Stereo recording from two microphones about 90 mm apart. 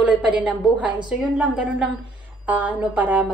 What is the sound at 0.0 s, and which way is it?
Speech, 15° right (ahead or behind).